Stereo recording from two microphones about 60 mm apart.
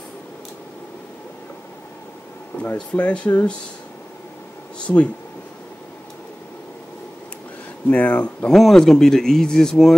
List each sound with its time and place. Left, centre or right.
2.6 s speech: left
4.8 s speech: left
7.9 s speech: left
8.5 s speech: centre